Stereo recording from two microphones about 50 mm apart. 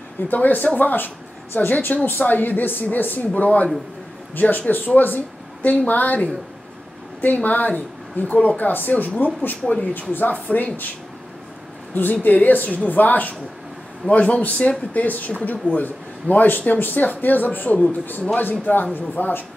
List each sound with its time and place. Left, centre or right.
0.3 s a woman's voice: left
3.3 s a man's voice: left
11.9 s a woman's voice: left
14.0 s a man's voice: left